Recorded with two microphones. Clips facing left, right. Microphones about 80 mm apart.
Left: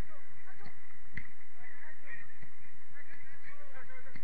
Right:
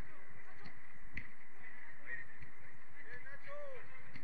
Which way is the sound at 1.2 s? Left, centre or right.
Left.